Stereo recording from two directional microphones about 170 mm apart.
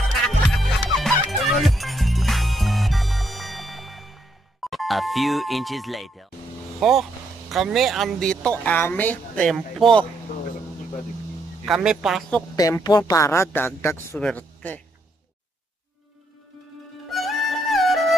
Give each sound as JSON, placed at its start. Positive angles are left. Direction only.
{"t": 0.5, "sound": "music", "side_deg": 0}
{"t": 6.8, "sound": "speech", "side_deg": 0}
{"t": 11.6, "sound": "speech", "side_deg": -5}
{"t": 12.5, "sound": "speech", "side_deg": 20}
{"t": 17.1, "sound": "music", "side_deg": 0}